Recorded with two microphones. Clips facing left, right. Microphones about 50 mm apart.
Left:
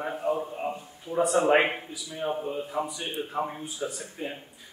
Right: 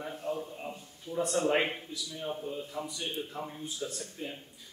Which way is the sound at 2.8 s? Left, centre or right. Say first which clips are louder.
Left 4 dB; centre.